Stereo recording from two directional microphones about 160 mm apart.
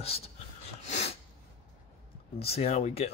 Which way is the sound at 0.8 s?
45° left (ahead or behind).